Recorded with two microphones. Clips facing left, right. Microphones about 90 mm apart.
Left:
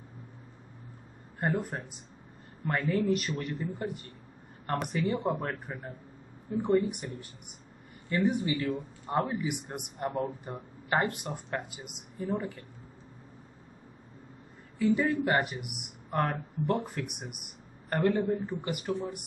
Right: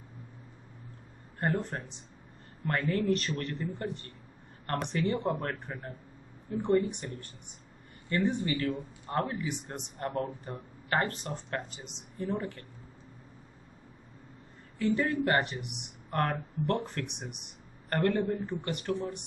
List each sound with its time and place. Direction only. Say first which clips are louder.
1.4 s speech: even; 5° left (ahead or behind)
14.8 s speech: left 2 dB; centre (ahead or behind)